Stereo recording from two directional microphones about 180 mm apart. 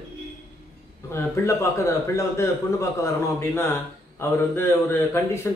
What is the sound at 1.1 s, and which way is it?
Speech, 15° left (ahead or behind).